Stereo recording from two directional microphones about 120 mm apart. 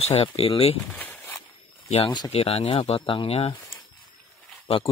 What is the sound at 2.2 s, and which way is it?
Speech, 55° left (ahead or behind).